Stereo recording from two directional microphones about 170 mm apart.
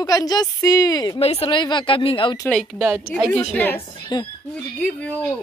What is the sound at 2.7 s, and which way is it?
Speech, 10° right (ahead or behind).